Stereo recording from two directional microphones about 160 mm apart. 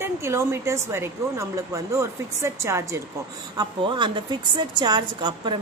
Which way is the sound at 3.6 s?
30° right (ahead or behind).